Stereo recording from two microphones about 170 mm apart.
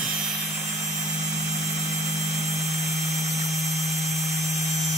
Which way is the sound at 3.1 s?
20° right (ahead or behind).